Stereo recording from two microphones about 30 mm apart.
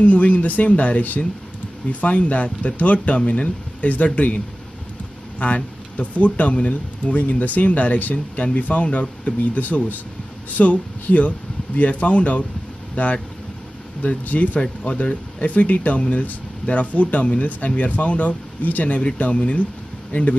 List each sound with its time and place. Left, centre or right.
0.0 s speech: left
5.4 s speech: left
9.4 s speech: left
14.2 s speech: left
14.6 s speech: left
15.0 s speech: left
19.1 s speech: left
20.1 s speech: left